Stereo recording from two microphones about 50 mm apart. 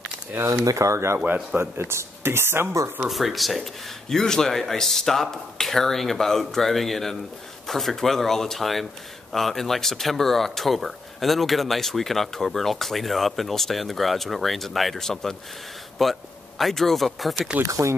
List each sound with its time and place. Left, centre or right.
0.5 s speech: right
1.2 s a man's voice: right
1.6 s speech: right
3.1 s speech: centre
17.6 s speech: right